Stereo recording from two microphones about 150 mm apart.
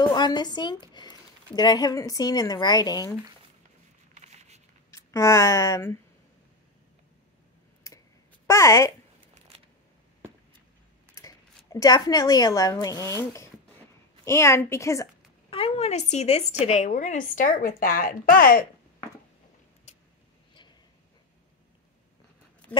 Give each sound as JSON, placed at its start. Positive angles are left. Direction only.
{"t": 0.0, "sound": "a woman's voice", "side_deg": 30}
{"t": 4.1, "sound": "a sound", "side_deg": -50}
{"t": 4.9, "sound": "speech", "side_deg": 20}
{"t": 8.5, "sound": "a woman's voice", "side_deg": 20}
{"t": 11.1, "sound": "speech", "side_deg": 20}
{"t": 15.5, "sound": "speech", "side_deg": 40}